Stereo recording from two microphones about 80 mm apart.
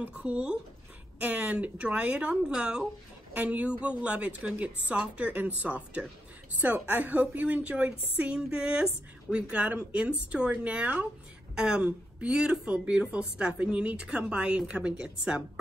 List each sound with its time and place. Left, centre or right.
0.0 s a woman's voice: centre